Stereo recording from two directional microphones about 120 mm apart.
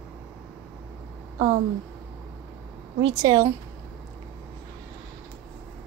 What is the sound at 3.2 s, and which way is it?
Speech, 30° right (ahead or behind).